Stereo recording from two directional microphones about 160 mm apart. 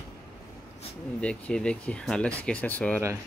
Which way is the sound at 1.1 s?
5° left (ahead or behind).